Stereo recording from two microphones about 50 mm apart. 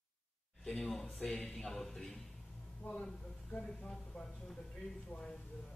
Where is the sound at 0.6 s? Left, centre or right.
Centre.